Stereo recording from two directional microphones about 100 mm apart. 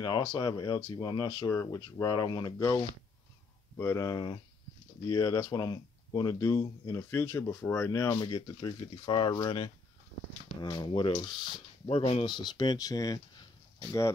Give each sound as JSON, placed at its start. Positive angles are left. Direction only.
{"t": 0.0, "sound": "speech", "side_deg": 40}
{"t": 3.7, "sound": "speech", "side_deg": 30}
{"t": 10.9, "sound": "speech", "side_deg": 60}
{"t": 12.0, "sound": "speech", "side_deg": 75}
{"t": 12.3, "sound": "speech", "side_deg": 50}